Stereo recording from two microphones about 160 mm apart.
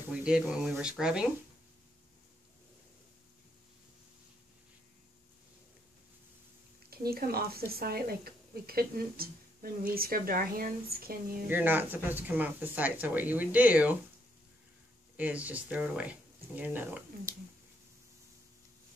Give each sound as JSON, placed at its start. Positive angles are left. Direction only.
{"t": 0.1, "sound": "speech", "side_deg": -5}
{"t": 6.9, "sound": "a woman's voice", "side_deg": -70}
{"t": 11.4, "sound": "speech", "side_deg": -10}
{"t": 15.1, "sound": "speech", "side_deg": -10}